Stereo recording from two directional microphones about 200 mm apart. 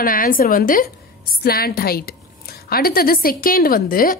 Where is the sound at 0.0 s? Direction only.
45° left (ahead or behind).